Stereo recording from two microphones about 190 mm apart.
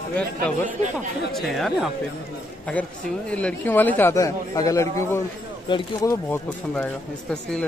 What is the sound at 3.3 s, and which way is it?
A man's voice, 5° left (ahead or behind).